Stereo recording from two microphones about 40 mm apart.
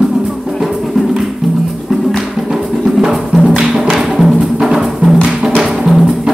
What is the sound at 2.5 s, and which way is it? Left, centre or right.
Music, centre.